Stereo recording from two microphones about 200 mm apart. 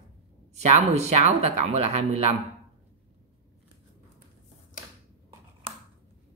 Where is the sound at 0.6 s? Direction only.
35° right (ahead or behind).